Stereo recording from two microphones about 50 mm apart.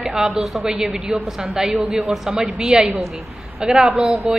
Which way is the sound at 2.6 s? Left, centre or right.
Centre.